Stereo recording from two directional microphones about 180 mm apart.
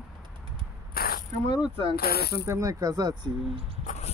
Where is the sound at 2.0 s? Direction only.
60° left (ahead or behind).